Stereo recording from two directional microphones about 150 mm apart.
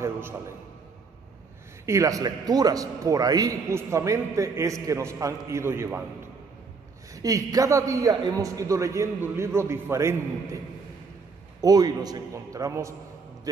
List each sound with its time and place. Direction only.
0.0 s a sound: 15° right (ahead or behind)
1.9 s a man's voice: 20° right (ahead or behind)
7.2 s a man's voice: 25° right (ahead or behind)
11.6 s a man's voice: 25° right (ahead or behind)